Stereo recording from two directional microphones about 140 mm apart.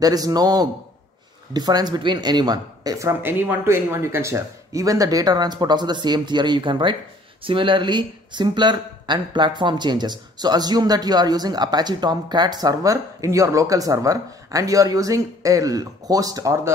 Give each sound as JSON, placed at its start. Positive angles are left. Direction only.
{"t": 0.0, "sound": "speech", "side_deg": -25}